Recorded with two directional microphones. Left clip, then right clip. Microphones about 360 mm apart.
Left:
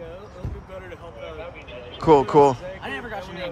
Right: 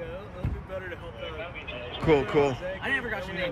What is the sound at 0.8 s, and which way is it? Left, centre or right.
Vehicle, centre.